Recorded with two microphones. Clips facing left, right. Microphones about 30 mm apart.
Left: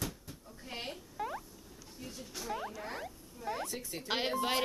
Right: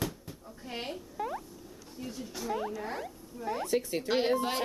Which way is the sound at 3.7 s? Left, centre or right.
Right.